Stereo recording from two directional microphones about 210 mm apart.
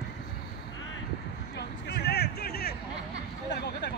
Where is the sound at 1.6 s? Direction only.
50° left (ahead or behind).